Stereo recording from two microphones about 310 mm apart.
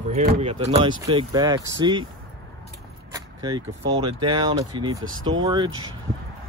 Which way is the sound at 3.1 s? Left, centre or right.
Centre.